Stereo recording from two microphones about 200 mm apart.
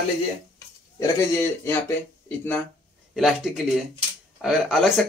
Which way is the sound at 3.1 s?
Centre (ahead or behind).